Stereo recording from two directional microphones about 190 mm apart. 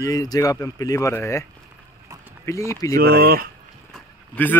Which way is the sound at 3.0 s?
55° right (ahead or behind).